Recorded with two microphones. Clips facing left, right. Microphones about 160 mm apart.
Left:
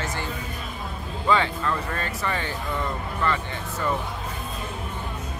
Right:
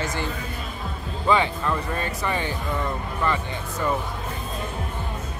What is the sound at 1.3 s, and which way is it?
Speech, 15° right (ahead or behind).